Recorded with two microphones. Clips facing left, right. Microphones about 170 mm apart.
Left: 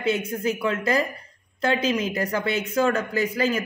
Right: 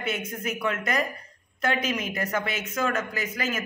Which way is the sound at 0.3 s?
30° left (ahead or behind).